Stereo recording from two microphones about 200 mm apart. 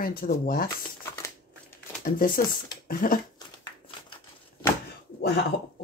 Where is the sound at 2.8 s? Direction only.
45° left (ahead or behind).